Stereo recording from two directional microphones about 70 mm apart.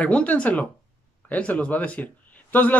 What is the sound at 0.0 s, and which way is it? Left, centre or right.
Speech, centre.